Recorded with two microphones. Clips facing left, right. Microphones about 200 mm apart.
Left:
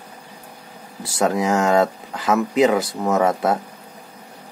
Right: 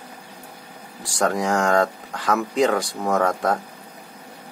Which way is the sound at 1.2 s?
5° left (ahead or behind).